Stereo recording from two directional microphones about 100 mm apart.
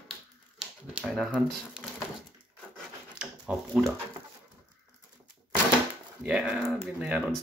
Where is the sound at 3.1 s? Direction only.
10° right (ahead or behind).